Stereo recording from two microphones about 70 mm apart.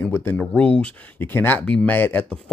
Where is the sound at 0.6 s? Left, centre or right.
Centre.